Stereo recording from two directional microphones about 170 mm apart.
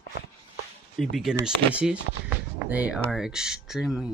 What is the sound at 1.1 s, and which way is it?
Speech, 5° right (ahead or behind).